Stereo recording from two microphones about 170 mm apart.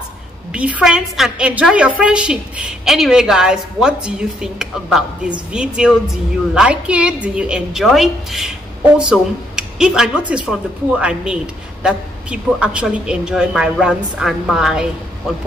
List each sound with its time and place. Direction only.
0.5 s a woman's voice: 5° right (ahead or behind)